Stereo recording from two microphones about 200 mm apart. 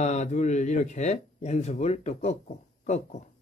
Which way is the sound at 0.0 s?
35° left (ahead or behind).